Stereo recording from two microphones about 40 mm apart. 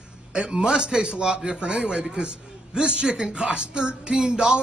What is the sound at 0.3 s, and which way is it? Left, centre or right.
A woman's voice, right.